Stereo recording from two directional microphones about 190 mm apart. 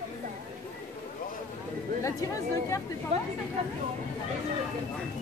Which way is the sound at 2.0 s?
15° left (ahead or behind).